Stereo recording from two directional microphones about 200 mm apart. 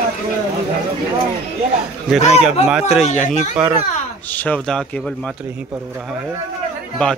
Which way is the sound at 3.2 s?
35° left (ahead or behind).